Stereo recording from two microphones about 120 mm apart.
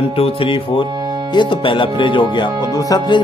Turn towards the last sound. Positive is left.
turn(degrees=35)  # may be behind; listen again after turning